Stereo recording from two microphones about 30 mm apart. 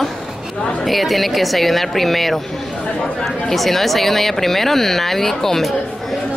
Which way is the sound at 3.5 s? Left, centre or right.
Centre.